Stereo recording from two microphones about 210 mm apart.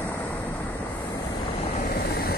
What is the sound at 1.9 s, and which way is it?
Vehicle, 45° left (ahead or behind).